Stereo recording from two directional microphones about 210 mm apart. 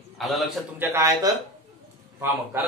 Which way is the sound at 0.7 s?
10° right (ahead or behind).